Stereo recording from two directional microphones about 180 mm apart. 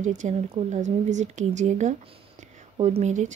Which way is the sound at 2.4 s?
35° right (ahead or behind).